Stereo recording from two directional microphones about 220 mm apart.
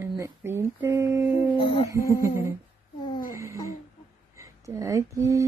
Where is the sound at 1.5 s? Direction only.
25° left (ahead or behind).